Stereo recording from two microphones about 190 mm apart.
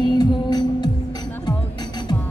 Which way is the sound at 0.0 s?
20° left (ahead or behind).